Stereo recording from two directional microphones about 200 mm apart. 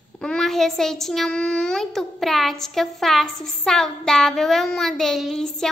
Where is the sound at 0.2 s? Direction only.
5° left (ahead or behind).